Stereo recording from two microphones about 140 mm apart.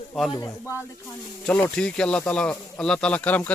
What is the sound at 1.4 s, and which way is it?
Speech, 10° left (ahead or behind).